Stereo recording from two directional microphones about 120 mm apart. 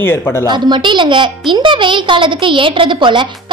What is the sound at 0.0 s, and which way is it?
Speech, 20° left (ahead or behind).